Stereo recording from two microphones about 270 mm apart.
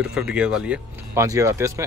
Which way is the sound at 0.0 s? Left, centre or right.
Centre.